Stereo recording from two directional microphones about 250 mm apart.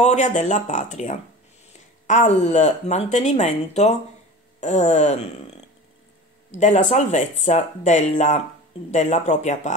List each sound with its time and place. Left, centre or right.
0.0 s speech: left
6.5 s speech: left